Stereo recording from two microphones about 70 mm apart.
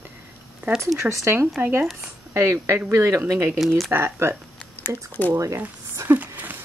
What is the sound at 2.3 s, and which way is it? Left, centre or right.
Speech, right.